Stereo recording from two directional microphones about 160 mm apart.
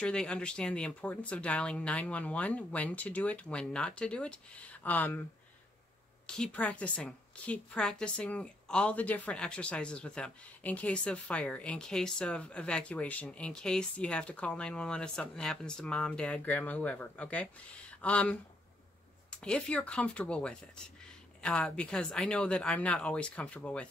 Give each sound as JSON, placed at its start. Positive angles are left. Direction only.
{"t": 0.0, "sound": "a woman's voice", "side_deg": 5}
{"t": 6.2, "sound": "a woman's voice", "side_deg": 5}